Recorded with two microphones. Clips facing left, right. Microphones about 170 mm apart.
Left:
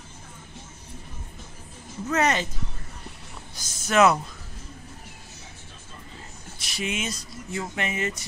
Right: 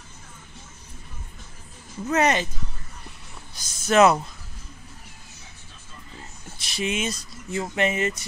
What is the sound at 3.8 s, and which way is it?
Speech, 30° right (ahead or behind).